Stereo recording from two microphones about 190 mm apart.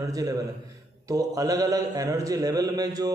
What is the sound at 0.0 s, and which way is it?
Speech, 20° right (ahead or behind).